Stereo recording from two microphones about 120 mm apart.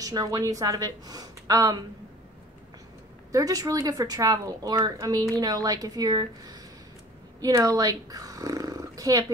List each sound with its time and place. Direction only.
0.0 s a woman's voice: 30° right (ahead or behind)
3.3 s a woman's voice: 30° right (ahead or behind)